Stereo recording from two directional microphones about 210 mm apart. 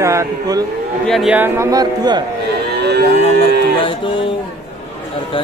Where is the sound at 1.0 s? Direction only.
Centre (ahead or behind); by 2.2 s 20° right (ahead or behind).